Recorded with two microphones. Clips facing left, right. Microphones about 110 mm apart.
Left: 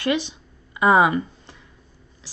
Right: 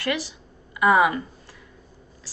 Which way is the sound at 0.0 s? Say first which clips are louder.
Left 4 dB; 20° left (ahead or behind).